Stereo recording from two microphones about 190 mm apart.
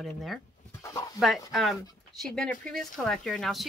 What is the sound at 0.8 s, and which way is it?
Speech, 15° left (ahead or behind).